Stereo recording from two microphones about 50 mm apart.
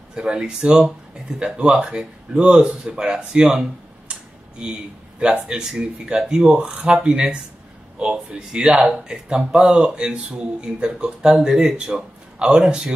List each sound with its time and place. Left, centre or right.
0.1 s speech: centre
4.1 s a sound: centre
5.2 s speech: centre